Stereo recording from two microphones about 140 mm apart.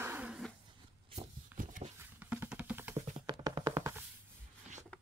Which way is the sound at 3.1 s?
35° right (ahead or behind).